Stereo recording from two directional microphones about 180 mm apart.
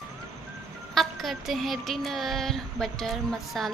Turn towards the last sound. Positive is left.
turn(degrees=0)  # may be behind; listen again after turning